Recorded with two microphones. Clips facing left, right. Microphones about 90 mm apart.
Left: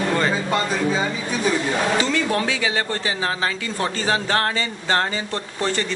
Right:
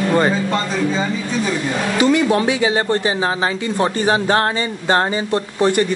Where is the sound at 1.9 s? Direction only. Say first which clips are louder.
Right 6 dB; 20° right (ahead or behind).